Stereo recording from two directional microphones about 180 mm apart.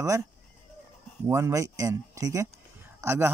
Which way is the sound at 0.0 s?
15° right (ahead or behind).